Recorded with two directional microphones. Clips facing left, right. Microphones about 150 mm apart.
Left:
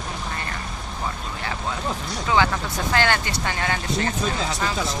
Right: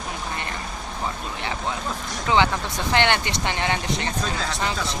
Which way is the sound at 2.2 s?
20° right (ahead or behind).